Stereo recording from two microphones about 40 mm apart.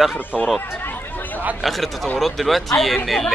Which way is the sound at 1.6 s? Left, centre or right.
Centre.